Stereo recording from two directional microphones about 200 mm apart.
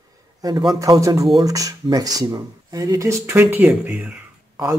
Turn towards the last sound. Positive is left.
turn(degrees=-15)  # may be behind; listen again after turning